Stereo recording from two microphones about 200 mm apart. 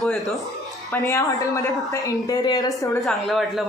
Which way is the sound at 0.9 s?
15° left (ahead or behind).